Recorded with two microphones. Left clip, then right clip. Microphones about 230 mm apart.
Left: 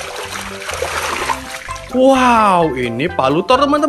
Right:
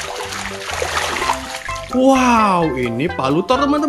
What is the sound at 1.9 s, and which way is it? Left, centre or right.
Speech, centre.